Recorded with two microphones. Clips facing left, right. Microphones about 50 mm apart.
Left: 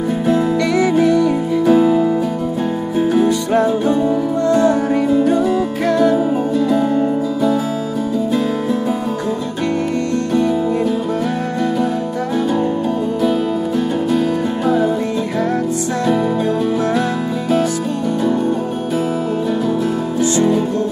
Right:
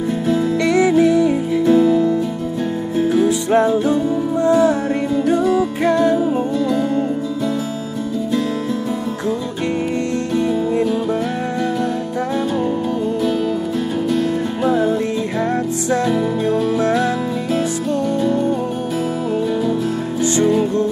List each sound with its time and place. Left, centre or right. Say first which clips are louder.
0.6 s music: right 1 dB; centre
1.7 s music: left 1 dB; left
3.3 s music: even; centre
5.0 s music: left 1 dB; centre
5.8 s music: left 1 dB; centre
6.6 s music: left 4 dB; centre
10.3 s music: left 1 dB; centre
14.6 s music: even; centre
16.5 s music: even; centre